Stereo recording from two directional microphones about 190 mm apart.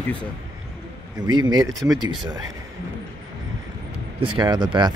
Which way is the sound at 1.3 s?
20° right (ahead or behind).